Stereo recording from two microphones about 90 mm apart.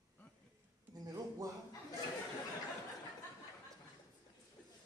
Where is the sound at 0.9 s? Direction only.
45° right (ahead or behind).